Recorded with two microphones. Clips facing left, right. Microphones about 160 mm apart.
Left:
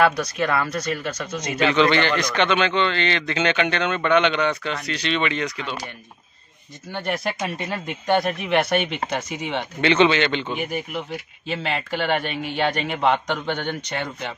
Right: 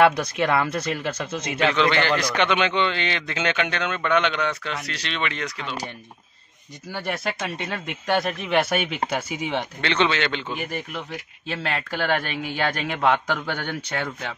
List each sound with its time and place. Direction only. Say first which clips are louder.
0.0 s speech: right 1 dB; 25° right (ahead or behind)
1.6 s a man's voice: left 3 dB; centre (ahead or behind)
6.9 s a man's voice: left 2 dB; centre (ahead or behind)
9.8 s a man's voice: left 7 dB; 5° left (ahead or behind)
13.3 s speech: left 2 dB; 20° left (ahead or behind)